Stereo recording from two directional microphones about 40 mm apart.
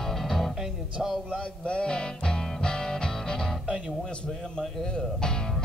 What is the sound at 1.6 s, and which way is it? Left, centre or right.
Music, left.